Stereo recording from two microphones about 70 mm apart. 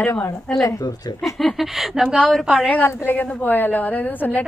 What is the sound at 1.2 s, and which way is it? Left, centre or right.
Speech, centre.